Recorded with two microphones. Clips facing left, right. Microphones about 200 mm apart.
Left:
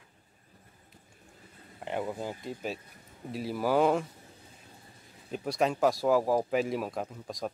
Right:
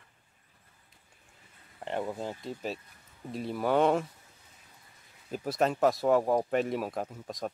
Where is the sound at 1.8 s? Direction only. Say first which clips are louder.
Even; centre (ahead or behind).